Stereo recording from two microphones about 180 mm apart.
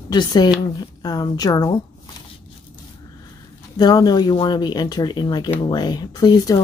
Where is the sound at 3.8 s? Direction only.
20° left (ahead or behind).